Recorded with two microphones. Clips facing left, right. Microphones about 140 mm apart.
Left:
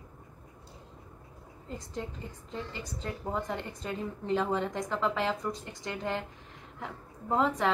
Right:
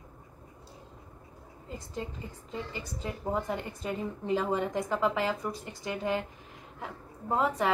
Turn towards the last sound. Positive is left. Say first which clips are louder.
# even
turn(degrees=-5)  # may be behind; listen again after turning